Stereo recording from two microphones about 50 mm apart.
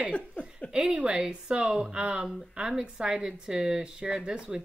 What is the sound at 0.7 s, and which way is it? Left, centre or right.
A woman's voice, centre.